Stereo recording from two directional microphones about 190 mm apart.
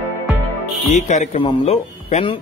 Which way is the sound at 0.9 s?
40° left (ahead or behind).